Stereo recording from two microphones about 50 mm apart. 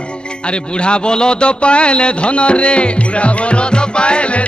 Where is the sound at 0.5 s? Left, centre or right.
Centre.